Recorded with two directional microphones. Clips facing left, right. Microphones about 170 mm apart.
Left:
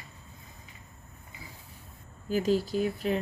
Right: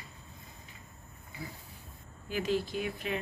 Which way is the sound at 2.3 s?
40° left (ahead or behind).